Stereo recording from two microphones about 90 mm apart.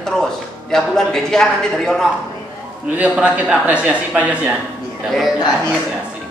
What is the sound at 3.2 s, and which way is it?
Speech, 15° right (ahead or behind).